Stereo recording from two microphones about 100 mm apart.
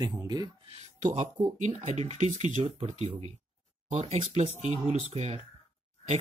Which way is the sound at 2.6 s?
80° right.